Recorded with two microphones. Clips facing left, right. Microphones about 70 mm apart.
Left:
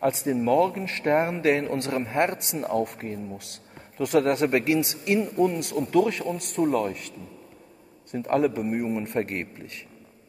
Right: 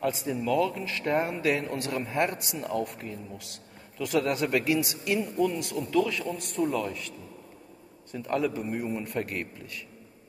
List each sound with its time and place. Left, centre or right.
0.0 s a man's voice: left